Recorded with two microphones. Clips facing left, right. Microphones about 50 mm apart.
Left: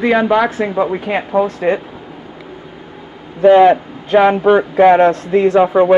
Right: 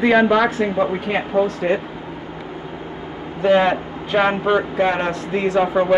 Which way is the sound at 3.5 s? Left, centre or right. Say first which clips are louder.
Left 7 dB; left.